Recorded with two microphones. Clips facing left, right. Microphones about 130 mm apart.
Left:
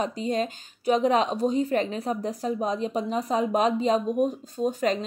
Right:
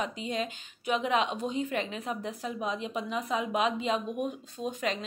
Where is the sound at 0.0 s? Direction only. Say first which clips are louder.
Left 6 dB; 40° left (ahead or behind).